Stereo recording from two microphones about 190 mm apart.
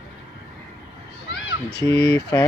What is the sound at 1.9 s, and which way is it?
Speech, 20° left (ahead or behind).